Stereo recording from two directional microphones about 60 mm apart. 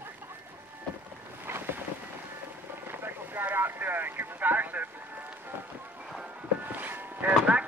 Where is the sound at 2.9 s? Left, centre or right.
Right.